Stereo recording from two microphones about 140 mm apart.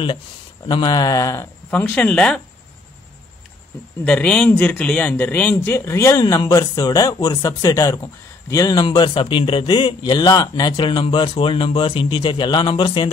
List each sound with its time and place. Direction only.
0.7 s speech: 30° left (ahead or behind)
1.7 s a man's voice: 10° left (ahead or behind)
4.0 s a man's voice: 10° left (ahead or behind); by 13.1 s 35° left (ahead or behind)